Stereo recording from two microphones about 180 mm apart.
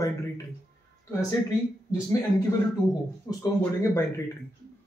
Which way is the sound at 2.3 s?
20° left (ahead or behind).